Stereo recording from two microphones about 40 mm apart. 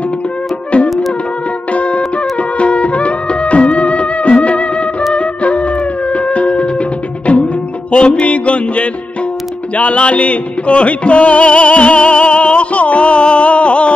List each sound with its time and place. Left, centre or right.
0.7 s music: left